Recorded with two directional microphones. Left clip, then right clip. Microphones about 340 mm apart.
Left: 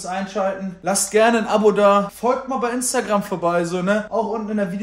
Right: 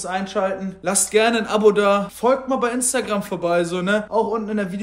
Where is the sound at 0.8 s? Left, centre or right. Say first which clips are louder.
Left 2 dB; centre.